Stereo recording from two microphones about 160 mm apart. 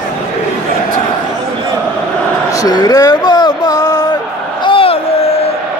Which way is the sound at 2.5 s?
25° left (ahead or behind).